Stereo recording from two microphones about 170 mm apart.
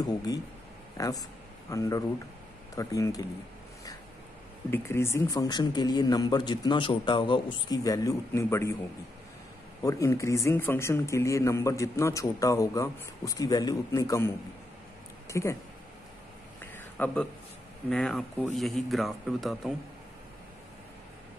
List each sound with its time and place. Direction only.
0.0 s a man's voice: 20° left (ahead or behind)
4.6 s a man's voice: 15° left (ahead or behind)
9.8 s speech: 20° left (ahead or behind)
16.7 s a sound: 10° left (ahead or behind)
17.8 s a man's voice: 5° left (ahead or behind)